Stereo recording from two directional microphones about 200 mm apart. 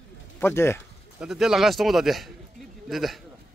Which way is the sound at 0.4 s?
10° left (ahead or behind).